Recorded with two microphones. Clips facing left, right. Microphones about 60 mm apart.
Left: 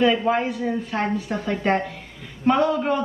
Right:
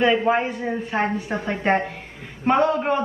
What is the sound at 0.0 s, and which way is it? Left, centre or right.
A man's voice, right.